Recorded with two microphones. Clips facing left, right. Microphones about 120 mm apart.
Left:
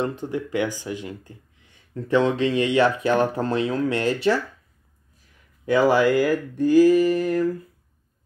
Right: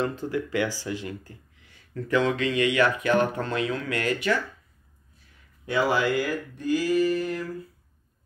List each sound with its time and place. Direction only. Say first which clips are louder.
0.2 s speech: left 2 dB; 20° left (ahead or behind)
5.7 s speech: left 6 dB; 40° left (ahead or behind)